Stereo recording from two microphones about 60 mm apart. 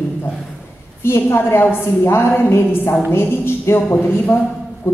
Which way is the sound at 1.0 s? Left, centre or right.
Left.